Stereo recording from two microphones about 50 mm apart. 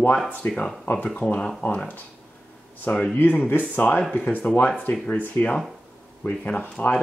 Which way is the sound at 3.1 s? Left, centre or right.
Left.